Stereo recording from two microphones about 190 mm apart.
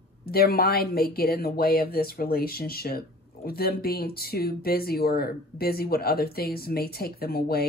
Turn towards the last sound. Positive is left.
turn(degrees=55)  # may be behind; listen again after turning